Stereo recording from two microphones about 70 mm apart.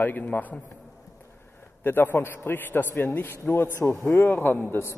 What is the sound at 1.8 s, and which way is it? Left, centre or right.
A man's voice, left.